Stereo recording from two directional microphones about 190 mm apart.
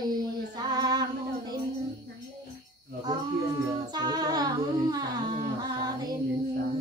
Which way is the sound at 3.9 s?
20° right (ahead or behind).